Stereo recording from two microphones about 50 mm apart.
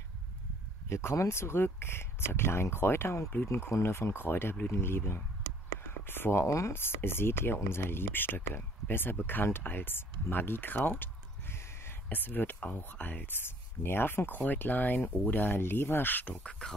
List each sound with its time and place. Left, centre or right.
0.8 s speech: left
6.4 s speech: left
6.7 s speech: left
10.9 s a sound: left
12.1 s speech: left
13.3 s speech: left
15.6 s speech: left
16.4 s speech: centre